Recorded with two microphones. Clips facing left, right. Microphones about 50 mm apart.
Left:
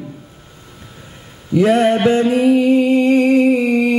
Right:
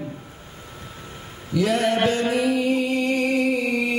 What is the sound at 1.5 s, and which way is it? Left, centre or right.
Mantra, left.